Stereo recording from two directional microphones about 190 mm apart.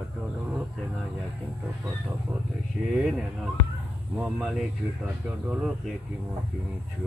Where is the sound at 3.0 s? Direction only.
5° right (ahead or behind).